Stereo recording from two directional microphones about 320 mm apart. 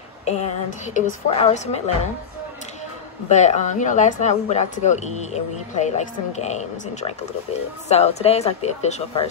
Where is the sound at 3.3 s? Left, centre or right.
Left.